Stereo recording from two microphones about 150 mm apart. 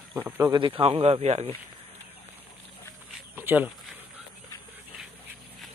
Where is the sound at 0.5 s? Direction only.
35° right (ahead or behind).